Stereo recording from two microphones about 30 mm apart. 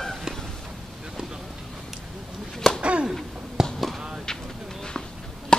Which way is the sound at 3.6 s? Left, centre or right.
Centre.